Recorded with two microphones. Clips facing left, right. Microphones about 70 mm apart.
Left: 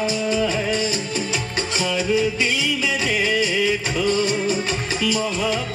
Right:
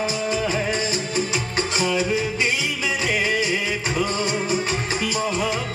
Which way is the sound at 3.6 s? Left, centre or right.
Right.